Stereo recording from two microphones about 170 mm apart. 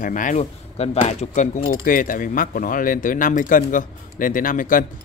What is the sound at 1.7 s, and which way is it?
Speech, 55° left (ahead or behind).